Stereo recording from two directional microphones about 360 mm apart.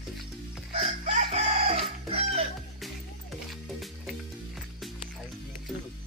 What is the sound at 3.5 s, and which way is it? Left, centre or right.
Music, centre.